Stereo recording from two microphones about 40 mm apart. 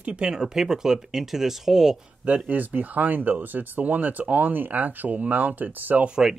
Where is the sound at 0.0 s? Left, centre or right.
Right.